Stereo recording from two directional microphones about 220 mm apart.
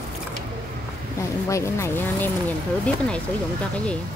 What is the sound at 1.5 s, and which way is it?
Speech, 10° left (ahead or behind).